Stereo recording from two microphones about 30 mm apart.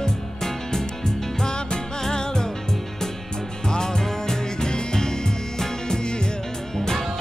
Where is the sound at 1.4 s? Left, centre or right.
Left.